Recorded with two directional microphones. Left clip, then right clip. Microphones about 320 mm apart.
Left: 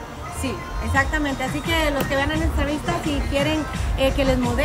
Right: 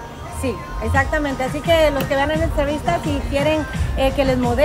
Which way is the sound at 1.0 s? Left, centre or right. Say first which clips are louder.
Right 2 dB; centre.